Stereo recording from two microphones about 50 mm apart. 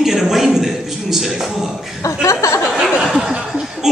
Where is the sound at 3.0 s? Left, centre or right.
Centre.